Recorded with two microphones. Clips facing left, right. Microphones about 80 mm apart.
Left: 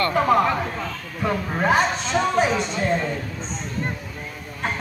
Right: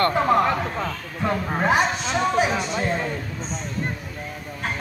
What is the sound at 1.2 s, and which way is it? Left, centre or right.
A man's voice, centre.